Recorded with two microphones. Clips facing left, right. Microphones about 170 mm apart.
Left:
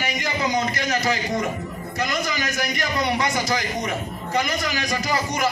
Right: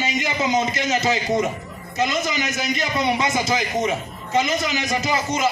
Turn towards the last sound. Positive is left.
turn(degrees=-20)  # may be behind; listen again after turning